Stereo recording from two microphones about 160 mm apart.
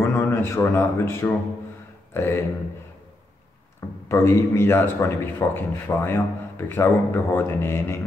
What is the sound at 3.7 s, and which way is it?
Speech, 15° left (ahead or behind).